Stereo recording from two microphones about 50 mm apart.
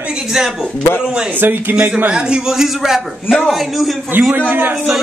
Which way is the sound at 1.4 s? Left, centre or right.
Right.